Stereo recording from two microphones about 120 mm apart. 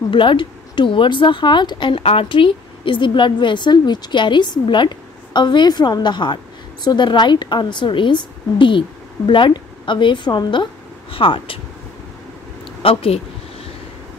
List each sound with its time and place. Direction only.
0.1 s speech: 45° left (ahead or behind)
12.8 s speech: 50° left (ahead or behind)